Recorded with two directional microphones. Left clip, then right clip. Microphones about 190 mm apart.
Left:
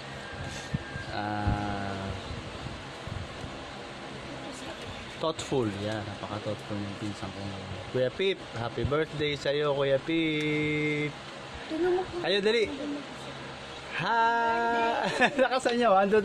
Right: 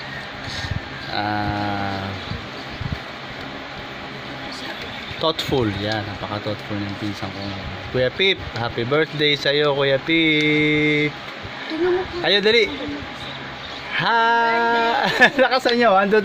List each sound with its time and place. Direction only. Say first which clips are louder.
1.1 s a sound: right 10 dB; 15° right (ahead or behind)
5.2 s speech: right 9 dB; 10° right (ahead or behind)
8.0 s speech: right 10 dB; 15° right (ahead or behind)
12.2 s speech: right 11 dB; 15° right (ahead or behind)
13.9 s speech: right 9 dB; 15° right (ahead or behind)